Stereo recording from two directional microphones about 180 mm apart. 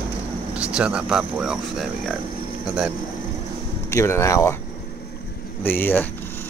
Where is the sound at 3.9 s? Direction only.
15° left (ahead or behind).